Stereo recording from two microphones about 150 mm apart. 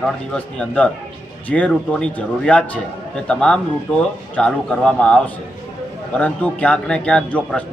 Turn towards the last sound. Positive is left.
turn(degrees=5)  # may be behind; listen again after turning